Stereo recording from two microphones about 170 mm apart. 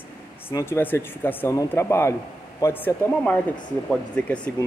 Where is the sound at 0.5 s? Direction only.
15° left (ahead or behind).